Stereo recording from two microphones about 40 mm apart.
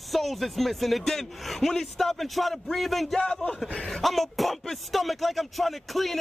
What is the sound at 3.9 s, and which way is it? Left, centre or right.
Speech, centre.